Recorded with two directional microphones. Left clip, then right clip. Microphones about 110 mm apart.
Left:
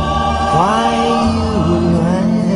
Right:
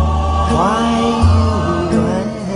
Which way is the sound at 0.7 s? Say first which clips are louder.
Left 2 dB; 45° right (ahead or behind).